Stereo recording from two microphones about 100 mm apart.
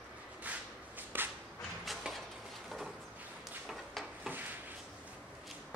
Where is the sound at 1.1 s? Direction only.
20° right (ahead or behind).